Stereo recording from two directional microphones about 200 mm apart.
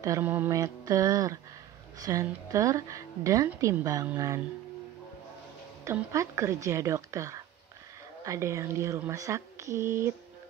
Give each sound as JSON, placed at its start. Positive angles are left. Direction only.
{"t": 0.0, "sound": "a woman's voice", "side_deg": -15}
{"t": 5.9, "sound": "a woman's voice", "side_deg": -15}